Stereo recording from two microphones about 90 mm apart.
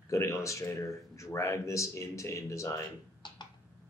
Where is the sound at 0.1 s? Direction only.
35° left (ahead or behind).